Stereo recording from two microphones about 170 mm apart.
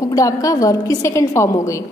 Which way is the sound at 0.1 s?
20° left (ahead or behind).